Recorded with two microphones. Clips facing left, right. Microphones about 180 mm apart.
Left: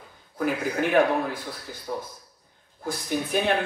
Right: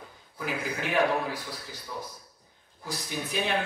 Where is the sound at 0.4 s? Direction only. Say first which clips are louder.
Left 7 dB; 55° left (ahead or behind).